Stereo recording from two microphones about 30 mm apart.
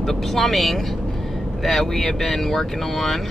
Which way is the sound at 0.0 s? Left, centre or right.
Centre.